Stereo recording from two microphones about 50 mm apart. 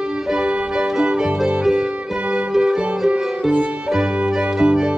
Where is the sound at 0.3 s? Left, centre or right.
Centre.